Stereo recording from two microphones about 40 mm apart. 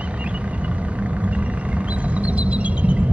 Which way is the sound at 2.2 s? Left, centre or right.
Right.